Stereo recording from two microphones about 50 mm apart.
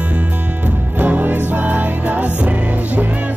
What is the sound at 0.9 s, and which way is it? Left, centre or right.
Music, right.